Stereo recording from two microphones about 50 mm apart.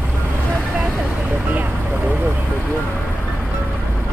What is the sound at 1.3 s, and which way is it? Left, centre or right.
Vehicle, right.